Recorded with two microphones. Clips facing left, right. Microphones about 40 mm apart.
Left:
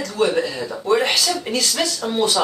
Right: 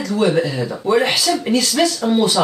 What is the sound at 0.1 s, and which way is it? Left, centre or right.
Speech, centre.